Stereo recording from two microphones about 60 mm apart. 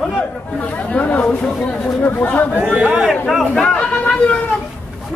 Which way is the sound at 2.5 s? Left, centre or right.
Centre.